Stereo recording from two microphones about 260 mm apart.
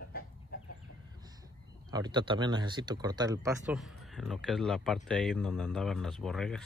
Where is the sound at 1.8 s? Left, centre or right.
Centre.